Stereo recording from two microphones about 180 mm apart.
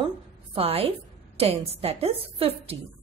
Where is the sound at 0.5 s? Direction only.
30° right (ahead or behind).